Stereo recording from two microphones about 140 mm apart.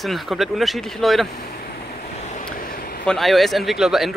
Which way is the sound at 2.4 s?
90° left.